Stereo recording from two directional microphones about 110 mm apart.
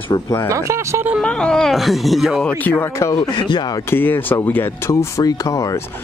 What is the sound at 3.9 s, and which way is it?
Speech, 20° left (ahead or behind).